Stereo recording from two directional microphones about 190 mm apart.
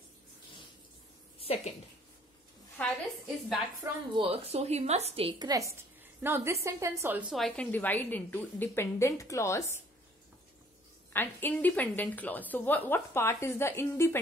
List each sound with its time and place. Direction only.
1.4 s a woman's voice: 30° left (ahead or behind)
2.8 s a woman's voice: 10° left (ahead or behind)
3.8 s a woman's voice: 25° right (ahead or behind); by 9.8 s 15° left (ahead or behind)
11.1 s a woman's voice: 10° left (ahead or behind)